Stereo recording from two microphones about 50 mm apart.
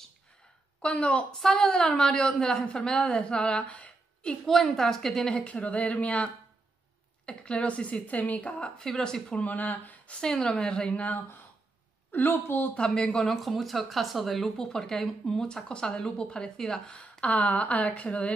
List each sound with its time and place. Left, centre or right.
0.8 s a woman's voice: left
4.5 s speech: centre
5.4 s speech: left
9.3 s speech: left
10.2 s speech: centre
12.1 s speech: left
12.7 s a woman's voice: centre
17.0 s speech: left